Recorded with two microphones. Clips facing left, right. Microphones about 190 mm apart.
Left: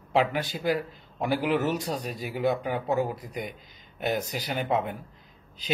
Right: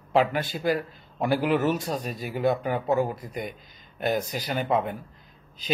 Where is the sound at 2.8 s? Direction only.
45° right (ahead or behind).